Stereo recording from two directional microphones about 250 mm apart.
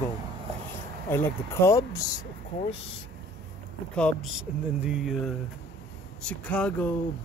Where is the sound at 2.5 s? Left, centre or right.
Left.